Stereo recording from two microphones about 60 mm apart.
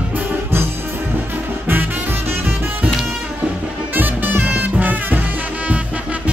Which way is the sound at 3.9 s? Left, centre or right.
Right.